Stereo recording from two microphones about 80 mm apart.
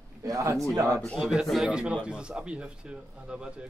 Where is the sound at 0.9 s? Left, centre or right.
Centre.